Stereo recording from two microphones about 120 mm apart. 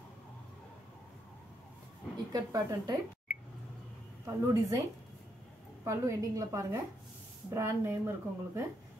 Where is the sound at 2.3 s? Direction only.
30° right (ahead or behind).